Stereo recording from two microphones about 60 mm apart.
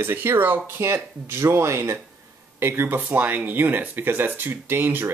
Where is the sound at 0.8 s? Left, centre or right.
Right.